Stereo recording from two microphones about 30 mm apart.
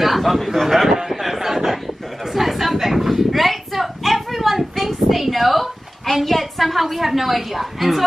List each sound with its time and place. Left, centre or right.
0.0 s a man's voice: centre
0.8 s a sound: centre
6.2 s a woman's voice: centre